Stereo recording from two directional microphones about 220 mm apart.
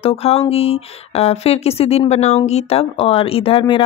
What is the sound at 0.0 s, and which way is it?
Speech, 25° left (ahead or behind).